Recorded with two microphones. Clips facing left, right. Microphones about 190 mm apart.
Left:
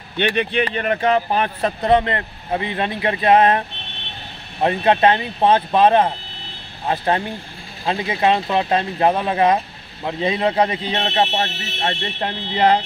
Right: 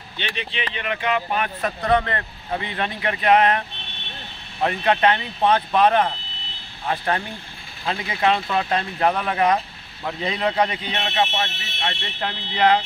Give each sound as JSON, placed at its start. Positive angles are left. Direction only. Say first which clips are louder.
{"t": 0.2, "sound": "speech", "louder": "left 11 dB", "side_deg": 55}
{"t": 0.7, "sound": "speech", "louder": "left 4 dB", "side_deg": 40}